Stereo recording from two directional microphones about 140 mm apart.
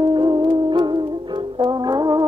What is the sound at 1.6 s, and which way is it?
Brass instrument, 30° right (ahead or behind).